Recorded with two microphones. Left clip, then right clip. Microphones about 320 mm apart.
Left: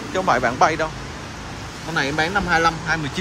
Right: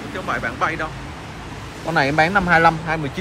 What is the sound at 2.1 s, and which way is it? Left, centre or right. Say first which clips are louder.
Speech: right 4 dB; centre.